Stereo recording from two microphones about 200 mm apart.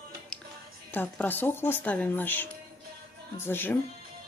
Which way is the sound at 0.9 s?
10° left (ahead or behind).